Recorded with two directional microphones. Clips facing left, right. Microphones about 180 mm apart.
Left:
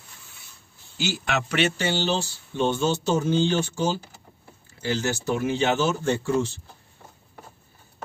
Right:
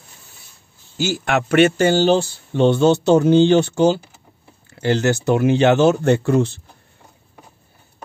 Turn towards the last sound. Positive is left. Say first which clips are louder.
# right 7 dB
turn(degrees=-60)  # may be behind; listen again after turning